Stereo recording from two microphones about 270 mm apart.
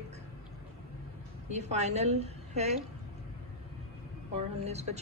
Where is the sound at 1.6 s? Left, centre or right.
Right.